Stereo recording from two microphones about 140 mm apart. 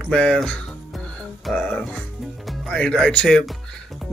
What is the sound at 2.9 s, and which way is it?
Speech, centre (ahead or behind).